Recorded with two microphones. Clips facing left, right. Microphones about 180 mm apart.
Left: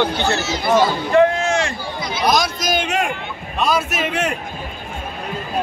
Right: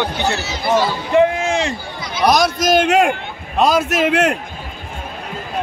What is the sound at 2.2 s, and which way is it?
Speech, 65° right (ahead or behind).